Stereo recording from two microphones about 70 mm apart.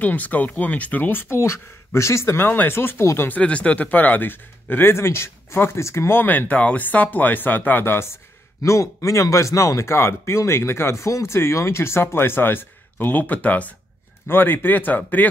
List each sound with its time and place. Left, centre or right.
0.0 s speech: left
3.3 s speech: centre